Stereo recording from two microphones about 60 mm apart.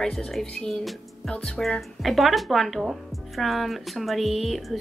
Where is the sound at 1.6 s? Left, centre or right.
Centre.